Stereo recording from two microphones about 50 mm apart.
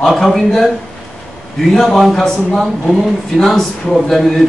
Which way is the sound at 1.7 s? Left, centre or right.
Centre.